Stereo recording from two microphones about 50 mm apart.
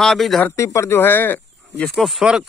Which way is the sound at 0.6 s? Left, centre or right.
Left.